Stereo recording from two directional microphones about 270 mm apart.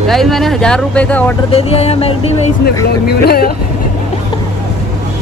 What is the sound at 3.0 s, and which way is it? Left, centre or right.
Speech, left.